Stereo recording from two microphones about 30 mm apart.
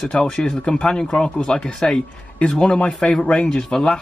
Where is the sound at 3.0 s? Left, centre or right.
Left.